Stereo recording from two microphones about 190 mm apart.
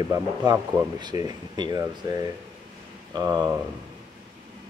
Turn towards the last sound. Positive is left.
turn(degrees=-20)  # may be behind; listen again after turning